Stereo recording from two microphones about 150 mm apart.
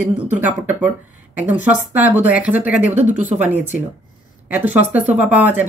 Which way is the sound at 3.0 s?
50° right (ahead or behind).